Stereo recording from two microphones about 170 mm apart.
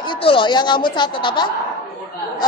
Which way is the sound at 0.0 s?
30° left (ahead or behind).